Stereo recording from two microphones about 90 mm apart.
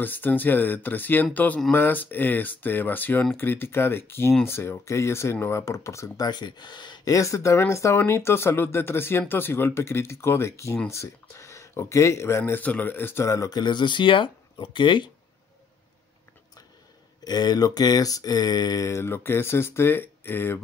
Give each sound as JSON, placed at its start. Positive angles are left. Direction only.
{"t": 0.0, "sound": "speech", "side_deg": 20}
{"t": 6.2, "sound": "speech", "side_deg": 55}
{"t": 7.2, "sound": "speech", "side_deg": 35}
{"t": 12.5, "sound": "speech", "side_deg": 20}
{"t": 13.3, "sound": "speech", "side_deg": 35}
{"t": 13.6, "sound": "speech", "side_deg": 55}
{"t": 17.2, "sound": "speech", "side_deg": 50}